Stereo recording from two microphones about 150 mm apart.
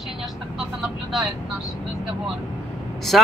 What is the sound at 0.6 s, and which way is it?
Speech, centre (ahead or behind).